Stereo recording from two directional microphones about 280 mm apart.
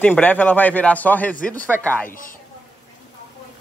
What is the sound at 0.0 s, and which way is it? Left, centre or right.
Speech, centre.